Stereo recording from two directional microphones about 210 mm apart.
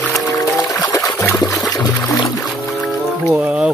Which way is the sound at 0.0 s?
Centre (ahead or behind).